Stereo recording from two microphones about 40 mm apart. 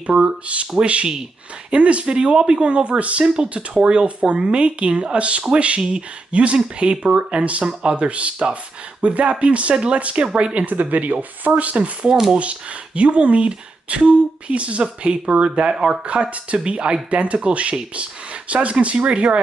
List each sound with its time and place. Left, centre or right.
0.0 s speech: right
1.7 s speech: right
10.6 s speech: right
12.1 s speech: centre
12.4 s speech: right